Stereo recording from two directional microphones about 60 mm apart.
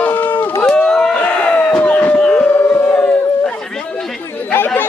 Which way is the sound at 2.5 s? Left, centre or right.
Left.